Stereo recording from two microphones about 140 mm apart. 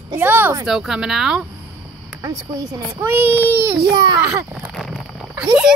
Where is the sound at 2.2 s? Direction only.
25° right (ahead or behind).